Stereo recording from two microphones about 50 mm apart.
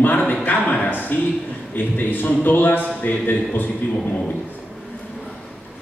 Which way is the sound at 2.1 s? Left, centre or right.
Left.